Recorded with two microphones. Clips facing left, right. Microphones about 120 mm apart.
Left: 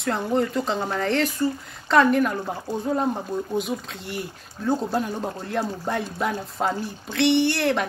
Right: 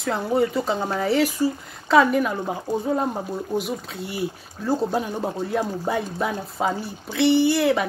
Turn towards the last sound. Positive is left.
turn(degrees=-5)  # may be behind; listen again after turning